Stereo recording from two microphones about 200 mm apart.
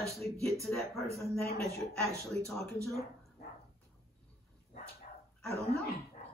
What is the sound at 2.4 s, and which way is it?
Speech, 5° left (ahead or behind).